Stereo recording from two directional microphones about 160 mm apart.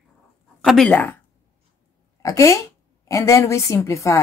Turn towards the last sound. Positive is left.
turn(degrees=20)  # may be behind; listen again after turning